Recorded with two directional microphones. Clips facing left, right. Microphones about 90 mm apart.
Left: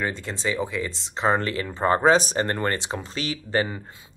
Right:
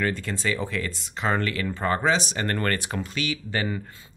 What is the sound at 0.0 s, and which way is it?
Speech, 20° left (ahead or behind).